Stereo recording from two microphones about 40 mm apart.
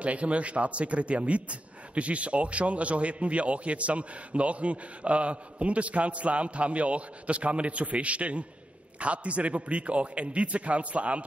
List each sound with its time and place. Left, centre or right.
0.0 s a man's voice: right